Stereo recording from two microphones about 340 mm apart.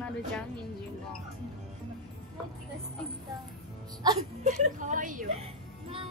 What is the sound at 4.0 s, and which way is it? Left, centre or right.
A woman's voice, centre.